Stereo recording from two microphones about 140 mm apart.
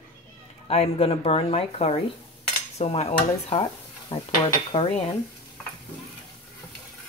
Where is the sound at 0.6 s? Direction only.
45° left (ahead or behind).